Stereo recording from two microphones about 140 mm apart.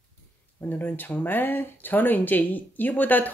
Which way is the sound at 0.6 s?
15° left (ahead or behind).